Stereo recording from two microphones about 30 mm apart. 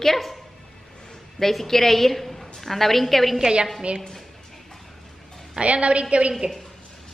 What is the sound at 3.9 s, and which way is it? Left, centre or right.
Speech, right.